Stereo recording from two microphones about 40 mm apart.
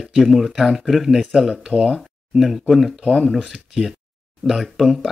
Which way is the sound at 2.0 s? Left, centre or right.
Centre.